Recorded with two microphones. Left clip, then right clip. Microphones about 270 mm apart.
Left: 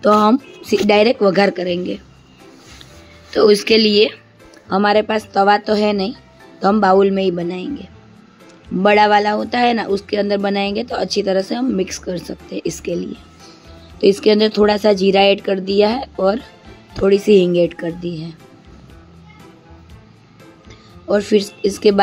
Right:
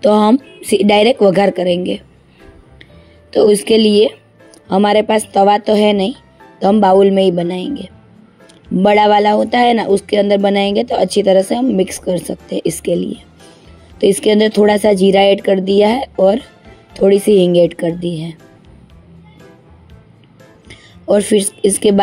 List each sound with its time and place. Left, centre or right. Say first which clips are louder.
0.0 s speech: right 2 dB; centre
3.3 s speech: right 2 dB; centre
21.1 s speech: right 3 dB; centre